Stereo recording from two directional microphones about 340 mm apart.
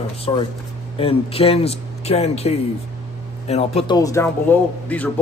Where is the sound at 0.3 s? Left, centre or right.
Centre.